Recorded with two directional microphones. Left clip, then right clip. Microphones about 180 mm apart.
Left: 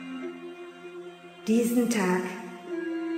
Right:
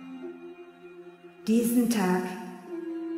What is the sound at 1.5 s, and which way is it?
Speech, 45° right (ahead or behind).